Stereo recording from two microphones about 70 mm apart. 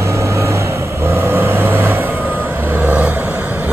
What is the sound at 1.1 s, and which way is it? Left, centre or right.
Vehicle, right.